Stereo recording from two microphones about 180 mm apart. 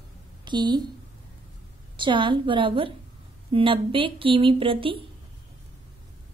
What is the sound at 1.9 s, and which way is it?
Speech, 25° right (ahead or behind).